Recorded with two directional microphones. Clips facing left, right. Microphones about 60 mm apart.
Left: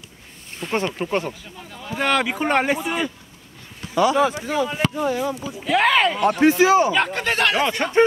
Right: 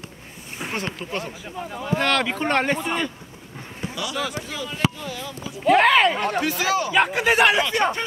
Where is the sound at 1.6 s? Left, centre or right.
Centre.